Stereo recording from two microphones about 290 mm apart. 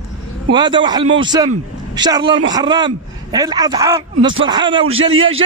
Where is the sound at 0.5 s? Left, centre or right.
Centre.